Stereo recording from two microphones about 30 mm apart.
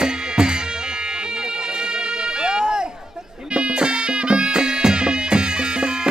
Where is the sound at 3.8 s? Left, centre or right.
Right.